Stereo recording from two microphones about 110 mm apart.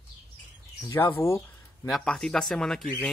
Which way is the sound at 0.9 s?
25° left (ahead or behind).